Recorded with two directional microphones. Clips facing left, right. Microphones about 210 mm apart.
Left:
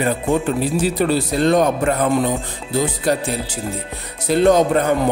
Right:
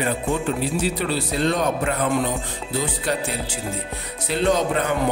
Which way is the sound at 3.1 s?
40° left (ahead or behind).